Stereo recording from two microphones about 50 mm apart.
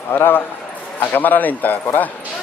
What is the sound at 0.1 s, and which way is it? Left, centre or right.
A man's voice, left.